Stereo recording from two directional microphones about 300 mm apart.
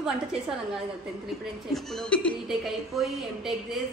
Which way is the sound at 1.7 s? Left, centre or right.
Centre.